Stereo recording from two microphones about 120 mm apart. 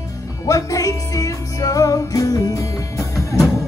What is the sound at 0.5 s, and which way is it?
Music, 30° left (ahead or behind).